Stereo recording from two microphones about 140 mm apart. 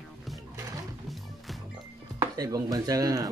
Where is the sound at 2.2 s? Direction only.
25° right (ahead or behind).